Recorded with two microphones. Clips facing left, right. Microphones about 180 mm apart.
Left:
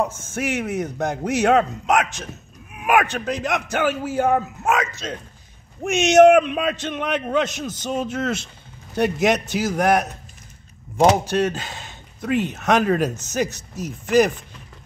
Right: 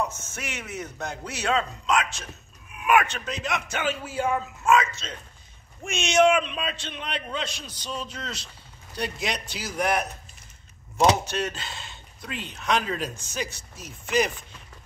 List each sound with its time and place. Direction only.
0.3 s a man's voice: 55° left (ahead or behind)
2.7 s a sound: 55° left (ahead or behind)
3.3 s a man's voice: 60° left (ahead or behind); by 13.9 s 40° left (ahead or behind)